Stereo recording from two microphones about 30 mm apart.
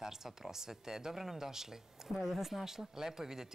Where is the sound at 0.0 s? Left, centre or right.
Centre.